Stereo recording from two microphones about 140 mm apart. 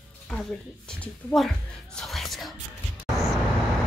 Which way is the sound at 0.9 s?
10° left (ahead or behind).